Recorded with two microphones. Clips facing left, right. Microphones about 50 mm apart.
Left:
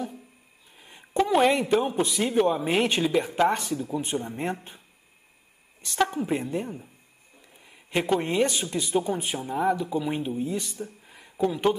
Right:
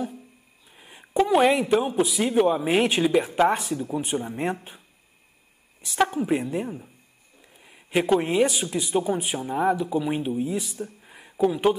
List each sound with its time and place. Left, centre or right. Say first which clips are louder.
0.7 s a woman's voice: right 2 dB; centre